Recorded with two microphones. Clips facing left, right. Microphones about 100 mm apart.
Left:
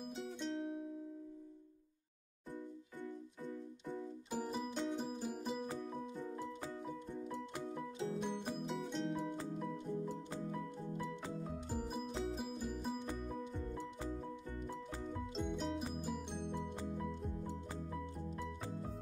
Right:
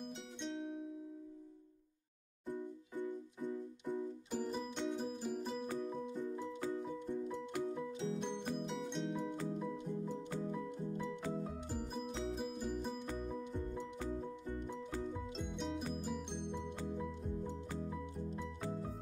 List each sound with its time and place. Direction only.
0.0 s music: centre (ahead or behind)
2.5 s music: 15° right (ahead or behind)
4.3 s music: 10° left (ahead or behind)
7.7 s music: 5° left (ahead or behind)
11.7 s music: centre (ahead or behind)
15.1 s music: centre (ahead or behind)